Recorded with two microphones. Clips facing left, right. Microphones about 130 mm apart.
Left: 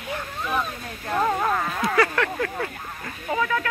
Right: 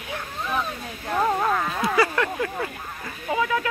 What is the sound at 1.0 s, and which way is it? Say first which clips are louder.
Speech: even; 5° right (ahead or behind).